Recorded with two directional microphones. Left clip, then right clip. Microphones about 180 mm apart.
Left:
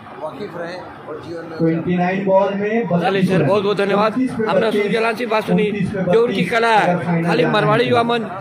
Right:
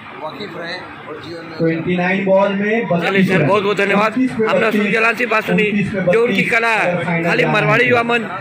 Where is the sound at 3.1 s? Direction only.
Centre (ahead or behind).